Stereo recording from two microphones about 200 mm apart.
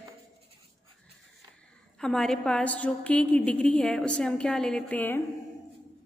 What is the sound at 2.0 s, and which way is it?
A woman's voice, 5° left (ahead or behind).